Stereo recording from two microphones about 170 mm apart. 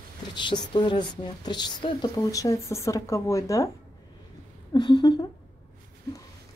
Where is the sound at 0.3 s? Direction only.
25° left (ahead or behind).